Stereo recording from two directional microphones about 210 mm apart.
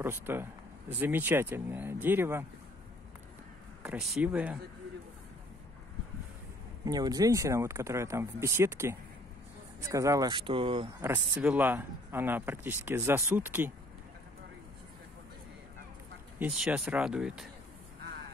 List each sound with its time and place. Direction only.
0.0 s speech: 10° right (ahead or behind)
3.8 s speech: 5° right (ahead or behind)
6.8 s speech: 20° right (ahead or behind)
11.0 s speech: 10° right (ahead or behind)
16.3 s speech: 5° right (ahead or behind)